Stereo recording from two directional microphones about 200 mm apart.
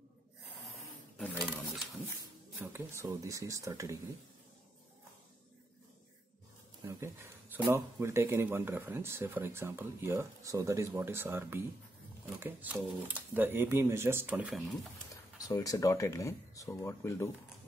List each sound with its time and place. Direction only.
1.1 s wild animals: 10° left (ahead or behind)
2.6 s speech: 10° right (ahead or behind)
6.8 s speech: 15° right (ahead or behind)
15.4 s speech: 15° left (ahead or behind)